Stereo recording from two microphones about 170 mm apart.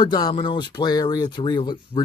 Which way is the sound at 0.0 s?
25° left (ahead or behind).